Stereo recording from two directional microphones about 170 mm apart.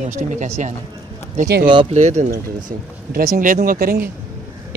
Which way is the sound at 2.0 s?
40° right (ahead or behind).